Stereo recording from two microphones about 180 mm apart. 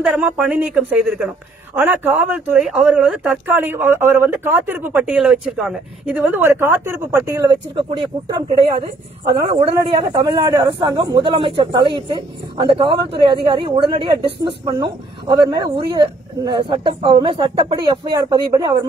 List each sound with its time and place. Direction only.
0.0 s a man's voice: 5° right (ahead or behind); by 18.9 s 25° right (ahead or behind)